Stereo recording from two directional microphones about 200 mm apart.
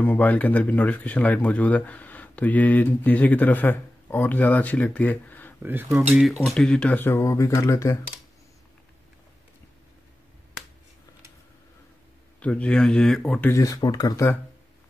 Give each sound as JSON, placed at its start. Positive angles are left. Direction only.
{"t": 0.0, "sound": "speech", "side_deg": 10}
{"t": 5.6, "sound": "speech", "side_deg": -10}
{"t": 12.4, "sound": "speech", "side_deg": 5}